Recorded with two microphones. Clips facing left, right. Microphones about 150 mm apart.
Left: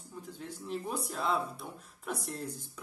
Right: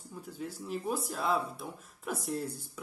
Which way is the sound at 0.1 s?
5° right (ahead or behind).